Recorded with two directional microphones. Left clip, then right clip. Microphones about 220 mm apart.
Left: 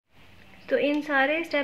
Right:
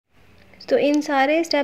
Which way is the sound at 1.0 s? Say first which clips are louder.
Right 5 dB; 40° right (ahead or behind).